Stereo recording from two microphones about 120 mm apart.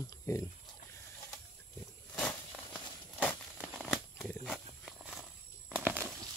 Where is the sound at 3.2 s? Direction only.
5° right (ahead or behind).